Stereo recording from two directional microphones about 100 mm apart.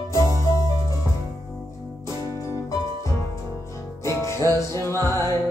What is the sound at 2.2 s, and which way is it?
Music, 35° left (ahead or behind).